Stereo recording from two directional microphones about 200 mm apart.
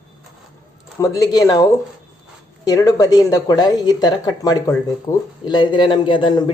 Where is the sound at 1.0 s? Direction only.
20° left (ahead or behind).